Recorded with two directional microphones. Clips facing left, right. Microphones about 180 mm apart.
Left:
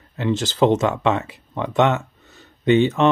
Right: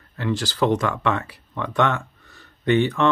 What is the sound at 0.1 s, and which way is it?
Speech, 20° left (ahead or behind).